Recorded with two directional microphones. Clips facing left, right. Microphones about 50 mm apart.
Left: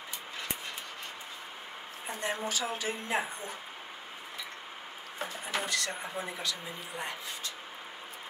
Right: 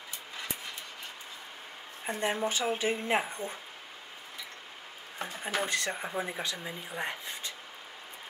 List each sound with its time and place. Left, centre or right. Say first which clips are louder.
2.0 s a woman's voice: right 4 dB; right
5.4 s speech: right 3 dB; right